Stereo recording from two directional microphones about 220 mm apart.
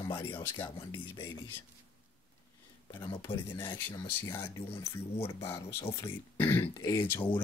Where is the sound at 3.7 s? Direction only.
10° left (ahead or behind).